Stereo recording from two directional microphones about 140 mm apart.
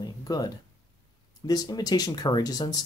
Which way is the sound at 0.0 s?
30° left (ahead or behind).